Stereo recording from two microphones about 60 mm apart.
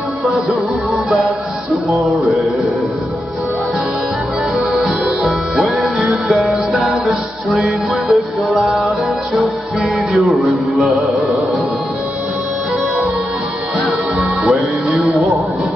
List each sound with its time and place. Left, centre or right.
1.1 s music: centre
4.7 s music: centre
10.1 s music: centre
14.4 s music: centre